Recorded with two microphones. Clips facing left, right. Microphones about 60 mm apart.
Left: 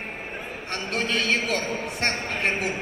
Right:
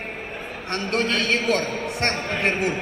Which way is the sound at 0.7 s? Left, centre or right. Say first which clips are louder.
Right 4 dB; right.